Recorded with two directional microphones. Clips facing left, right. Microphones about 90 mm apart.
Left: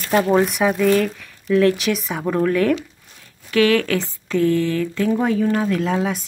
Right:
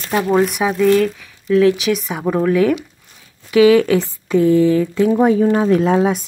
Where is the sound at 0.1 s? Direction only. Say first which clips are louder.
Right 1 dB; 5° right (ahead or behind).